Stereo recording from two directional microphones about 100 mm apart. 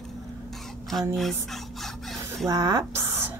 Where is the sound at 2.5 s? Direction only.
35° right (ahead or behind).